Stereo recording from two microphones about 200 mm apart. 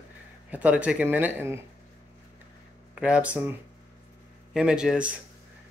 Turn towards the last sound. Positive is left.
turn(degrees=-5)  # may be behind; listen again after turning